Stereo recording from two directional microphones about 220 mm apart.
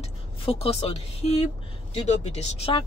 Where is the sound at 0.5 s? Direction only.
25° left (ahead or behind).